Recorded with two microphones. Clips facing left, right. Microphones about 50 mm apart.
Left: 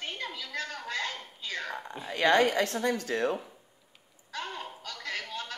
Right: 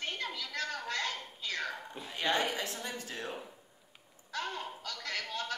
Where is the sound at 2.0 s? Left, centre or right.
Left.